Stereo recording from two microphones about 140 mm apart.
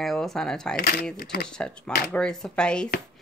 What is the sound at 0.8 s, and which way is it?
Speech, 90° left.